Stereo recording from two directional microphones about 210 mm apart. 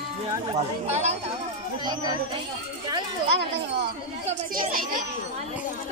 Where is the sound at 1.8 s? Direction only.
20° right (ahead or behind).